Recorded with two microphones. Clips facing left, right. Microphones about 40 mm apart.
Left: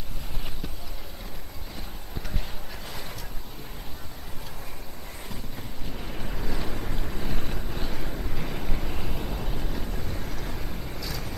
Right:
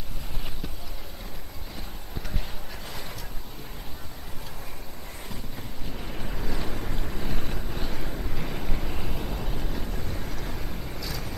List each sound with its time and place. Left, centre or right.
5.3 s boat: centre